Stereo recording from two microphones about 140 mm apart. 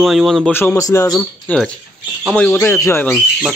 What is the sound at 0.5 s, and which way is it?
Speech, 15° left (ahead or behind).